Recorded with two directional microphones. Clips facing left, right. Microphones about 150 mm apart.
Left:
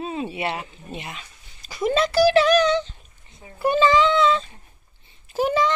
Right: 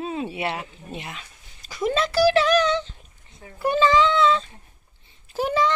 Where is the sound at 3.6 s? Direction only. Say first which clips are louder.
Left 1 dB; 10° left (ahead or behind).